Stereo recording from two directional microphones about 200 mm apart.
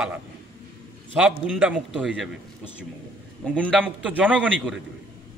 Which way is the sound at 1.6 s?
5° right (ahead or behind).